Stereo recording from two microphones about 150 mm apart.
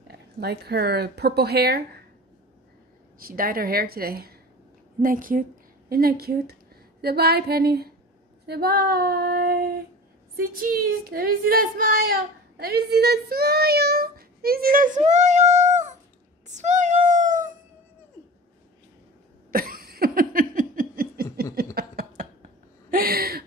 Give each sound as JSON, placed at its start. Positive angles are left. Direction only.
{"t": 0.1, "sound": "speech", "side_deg": -90}
{"t": 3.2, "sound": "speech", "side_deg": -75}
{"t": 5.0, "sound": "a woman's voice", "side_deg": -65}
{"t": 5.9, "sound": "speech", "side_deg": -90}
{"t": 8.5, "sound": "female singing", "side_deg": -90}
{"t": 10.4, "sound": "speech", "side_deg": -75}
{"t": 15.0, "sound": "a sound", "side_deg": -50}
{"t": 19.5, "sound": "a sound", "side_deg": -75}
{"t": 22.8, "sound": "speech", "side_deg": -80}